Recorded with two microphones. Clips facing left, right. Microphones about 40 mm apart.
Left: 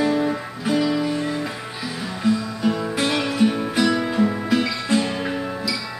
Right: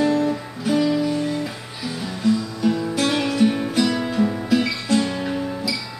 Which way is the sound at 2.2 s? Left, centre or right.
Centre.